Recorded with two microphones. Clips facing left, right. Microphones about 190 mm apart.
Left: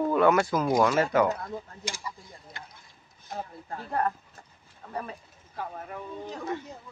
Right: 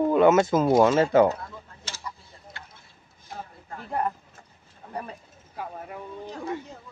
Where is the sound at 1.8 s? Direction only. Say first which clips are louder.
Left 2 dB; 15° left (ahead or behind).